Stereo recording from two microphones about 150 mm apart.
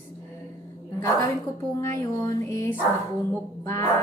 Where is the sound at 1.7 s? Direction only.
15° left (ahead or behind).